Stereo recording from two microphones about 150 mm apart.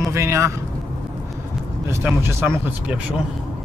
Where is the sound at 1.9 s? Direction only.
15° right (ahead or behind).